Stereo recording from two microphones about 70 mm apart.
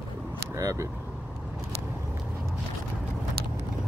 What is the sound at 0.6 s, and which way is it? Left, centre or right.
Vehicle, right.